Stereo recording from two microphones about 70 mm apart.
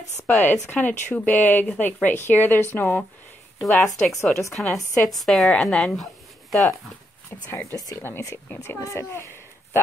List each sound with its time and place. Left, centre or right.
0.3 s speech: left
3.6 s speech: centre
7.9 s a woman's voice: left
9.1 s a sound: left